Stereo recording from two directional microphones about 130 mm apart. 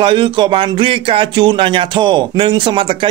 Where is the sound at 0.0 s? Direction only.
40° right (ahead or behind).